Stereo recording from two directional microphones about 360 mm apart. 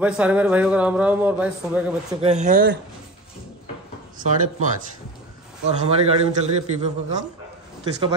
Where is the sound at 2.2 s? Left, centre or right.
Centre.